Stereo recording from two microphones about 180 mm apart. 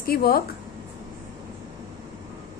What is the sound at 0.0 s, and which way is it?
Speech, 55° left (ahead or behind).